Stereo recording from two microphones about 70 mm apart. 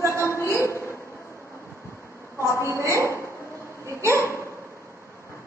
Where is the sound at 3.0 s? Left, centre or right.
Left.